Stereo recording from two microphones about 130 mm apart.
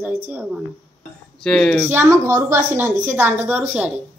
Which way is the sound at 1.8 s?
20° right (ahead or behind).